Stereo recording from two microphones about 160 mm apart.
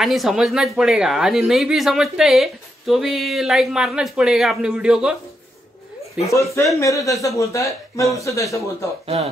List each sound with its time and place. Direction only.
0.0 s speech: centre (ahead or behind)
6.2 s speech: 20° left (ahead or behind)
9.0 s speech: 40° right (ahead or behind)